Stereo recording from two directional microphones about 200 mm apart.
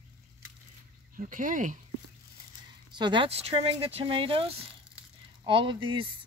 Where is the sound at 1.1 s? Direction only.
40° right (ahead or behind).